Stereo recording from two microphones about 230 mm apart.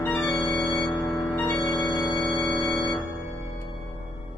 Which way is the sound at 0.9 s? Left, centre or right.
Centre.